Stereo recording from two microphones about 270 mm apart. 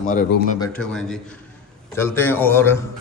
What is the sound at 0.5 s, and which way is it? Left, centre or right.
A man's voice, centre.